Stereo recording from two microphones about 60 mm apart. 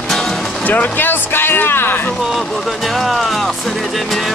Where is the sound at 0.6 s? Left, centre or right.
Left.